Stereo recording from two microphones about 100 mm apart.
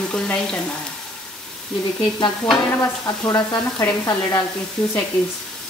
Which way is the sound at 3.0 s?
40° left (ahead or behind).